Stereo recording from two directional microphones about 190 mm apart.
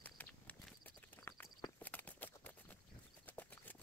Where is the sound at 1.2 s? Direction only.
15° left (ahead or behind).